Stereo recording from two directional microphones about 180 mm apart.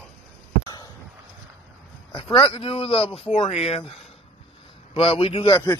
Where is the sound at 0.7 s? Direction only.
20° left (ahead or behind).